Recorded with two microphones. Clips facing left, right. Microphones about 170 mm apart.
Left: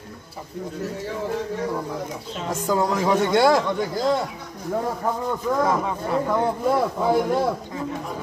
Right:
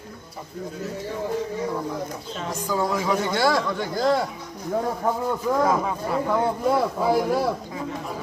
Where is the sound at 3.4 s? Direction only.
20° left (ahead or behind).